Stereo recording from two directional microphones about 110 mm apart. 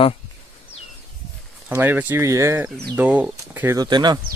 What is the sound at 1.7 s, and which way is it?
Speech, 20° right (ahead or behind).